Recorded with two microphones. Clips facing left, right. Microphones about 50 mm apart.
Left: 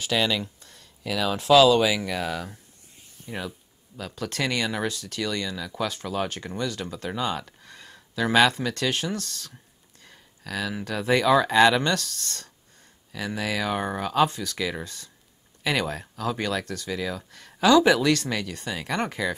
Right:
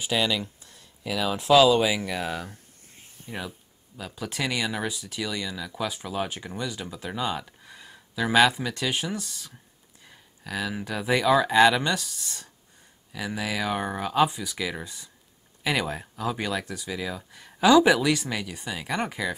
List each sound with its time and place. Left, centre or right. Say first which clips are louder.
0.6 s a sound: left 1 dB; left
1.4 s speech: left 1 dB; centre
1.7 s speech: left 1 dB; right
2.0 s speech: left 1 dB; centre